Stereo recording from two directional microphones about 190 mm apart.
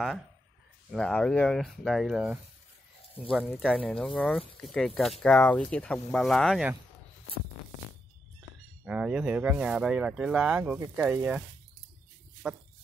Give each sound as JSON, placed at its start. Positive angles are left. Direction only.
{"t": 0.9, "sound": "speech", "side_deg": 5}
{"t": 8.8, "sound": "speech", "side_deg": -5}
{"t": 12.4, "sound": "speech", "side_deg": -5}